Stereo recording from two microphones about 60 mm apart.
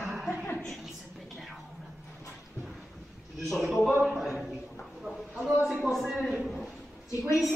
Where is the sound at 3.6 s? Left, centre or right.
Centre.